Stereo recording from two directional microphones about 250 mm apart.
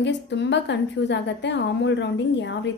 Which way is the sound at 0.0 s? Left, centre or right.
Left.